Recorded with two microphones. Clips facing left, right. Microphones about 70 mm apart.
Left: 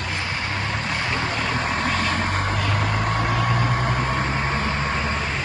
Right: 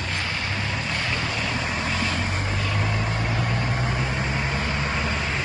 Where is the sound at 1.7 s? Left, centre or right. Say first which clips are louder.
Left 3 dB; left.